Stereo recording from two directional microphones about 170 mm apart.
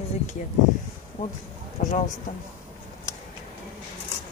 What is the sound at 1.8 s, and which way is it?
Speech, 45° left (ahead or behind).